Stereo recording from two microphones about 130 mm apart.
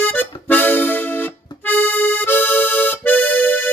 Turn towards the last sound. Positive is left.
turn(degrees=10)  # may be behind; listen again after turning